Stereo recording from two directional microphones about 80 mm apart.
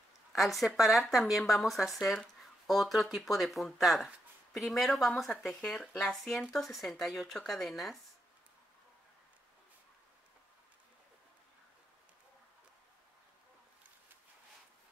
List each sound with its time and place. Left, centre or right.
0.3 s speech: centre